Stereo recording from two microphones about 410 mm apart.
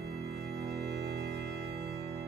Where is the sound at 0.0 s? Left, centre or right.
Right.